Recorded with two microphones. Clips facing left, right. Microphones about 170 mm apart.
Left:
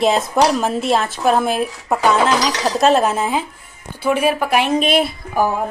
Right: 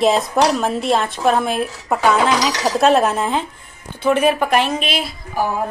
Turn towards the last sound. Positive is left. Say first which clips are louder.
# left 4 dB
turn(degrees=55)  # may be behind; listen again after turning